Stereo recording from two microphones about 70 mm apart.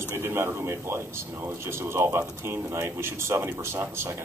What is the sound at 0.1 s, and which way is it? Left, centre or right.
A man's voice, right.